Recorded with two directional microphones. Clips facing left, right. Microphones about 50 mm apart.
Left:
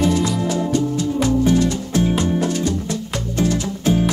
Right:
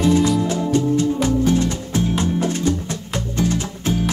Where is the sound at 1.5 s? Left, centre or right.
Right.